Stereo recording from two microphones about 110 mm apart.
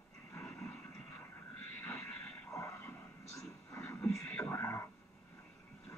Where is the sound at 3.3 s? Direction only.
25° left (ahead or behind).